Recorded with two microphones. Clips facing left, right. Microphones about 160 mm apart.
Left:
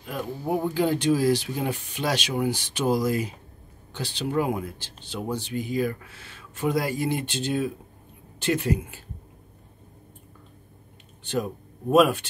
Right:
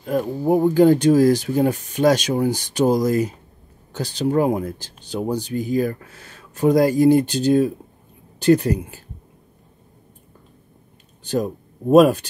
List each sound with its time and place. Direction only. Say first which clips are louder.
0.0 s speech: right 10 dB; 40° right (ahead or behind)
11.9 s speech: right 6 dB; 40° right (ahead or behind)